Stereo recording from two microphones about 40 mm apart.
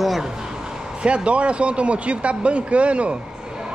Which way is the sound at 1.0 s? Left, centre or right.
Right.